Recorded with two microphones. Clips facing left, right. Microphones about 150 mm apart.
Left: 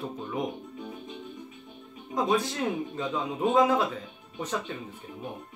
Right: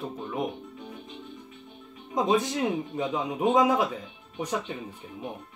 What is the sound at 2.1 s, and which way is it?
A man's voice, 20° right (ahead or behind).